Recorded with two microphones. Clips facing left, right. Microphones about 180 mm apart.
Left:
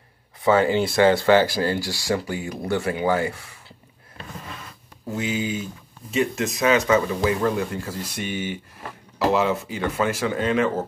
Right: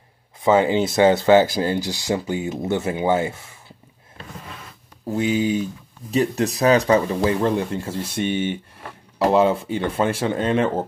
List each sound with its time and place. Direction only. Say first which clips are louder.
0.4 s speech: right 2 dB; 20° right (ahead or behind)
5.1 s speech: right 6 dB; 35° right (ahead or behind)